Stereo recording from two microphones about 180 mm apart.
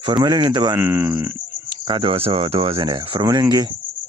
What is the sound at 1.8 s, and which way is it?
Speech, 30° right (ahead or behind).